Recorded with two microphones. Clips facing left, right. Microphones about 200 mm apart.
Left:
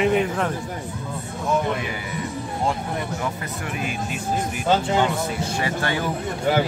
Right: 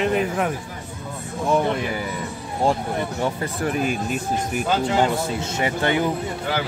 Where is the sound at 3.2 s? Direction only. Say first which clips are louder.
Right 5 dB; 40° right (ahead or behind).